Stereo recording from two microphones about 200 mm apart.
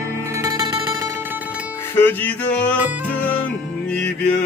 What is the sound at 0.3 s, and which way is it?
Music, 15° right (ahead or behind).